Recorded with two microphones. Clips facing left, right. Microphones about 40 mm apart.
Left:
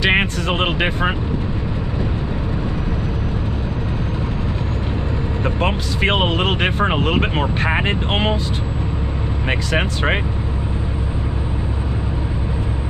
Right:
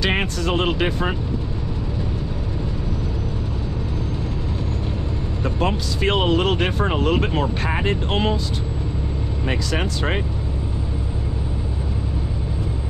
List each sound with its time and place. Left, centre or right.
0.0 s speech: left
5.4 s speech: left
9.5 s speech: left